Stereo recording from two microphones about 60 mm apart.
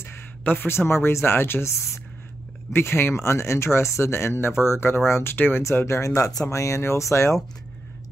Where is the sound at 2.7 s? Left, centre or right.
Left.